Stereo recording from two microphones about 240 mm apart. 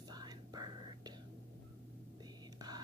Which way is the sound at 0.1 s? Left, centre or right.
Centre.